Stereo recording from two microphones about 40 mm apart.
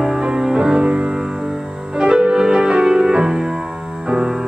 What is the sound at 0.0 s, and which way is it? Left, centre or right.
Music, centre.